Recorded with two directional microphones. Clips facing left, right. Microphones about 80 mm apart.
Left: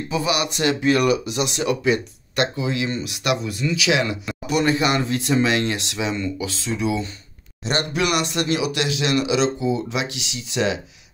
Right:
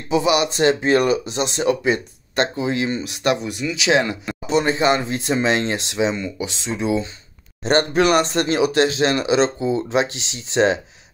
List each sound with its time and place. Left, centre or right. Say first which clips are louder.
0.1 s speech: right 6 dB; right
7.6 s speech: right 6 dB; right